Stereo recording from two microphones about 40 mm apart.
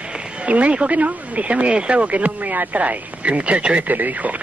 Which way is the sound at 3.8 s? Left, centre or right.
Right.